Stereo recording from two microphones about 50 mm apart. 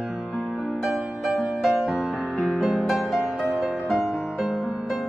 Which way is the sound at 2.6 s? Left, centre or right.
Centre.